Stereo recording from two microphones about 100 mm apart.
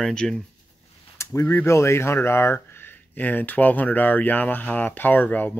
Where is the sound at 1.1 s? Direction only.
30° left (ahead or behind).